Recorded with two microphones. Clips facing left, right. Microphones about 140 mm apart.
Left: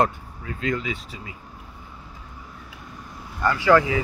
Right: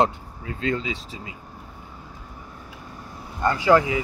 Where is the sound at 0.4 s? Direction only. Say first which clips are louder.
Right 1 dB; 30° right (ahead or behind).